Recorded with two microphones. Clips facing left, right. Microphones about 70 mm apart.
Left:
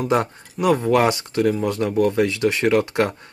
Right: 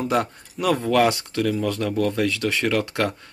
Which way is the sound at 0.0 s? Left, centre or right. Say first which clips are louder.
Left 2 dB; centre.